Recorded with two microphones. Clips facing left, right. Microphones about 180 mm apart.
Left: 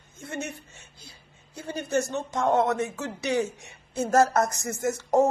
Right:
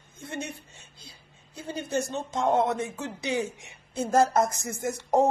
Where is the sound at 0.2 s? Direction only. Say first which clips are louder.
Left 1 dB; 20° right (ahead or behind).